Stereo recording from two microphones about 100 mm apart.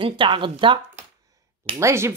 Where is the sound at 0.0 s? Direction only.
55° right (ahead or behind).